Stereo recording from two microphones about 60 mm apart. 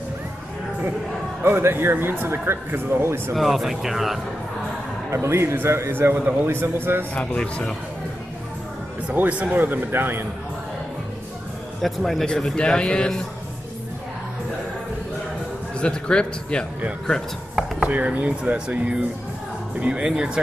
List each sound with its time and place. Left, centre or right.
1.4 s speech: right
3.3 s speech: centre
5.1 s a man's voice: right
7.2 s speech: centre
9.1 s speech: right
11.8 s speech: centre
15.8 s speech: centre
17.8 s speech: right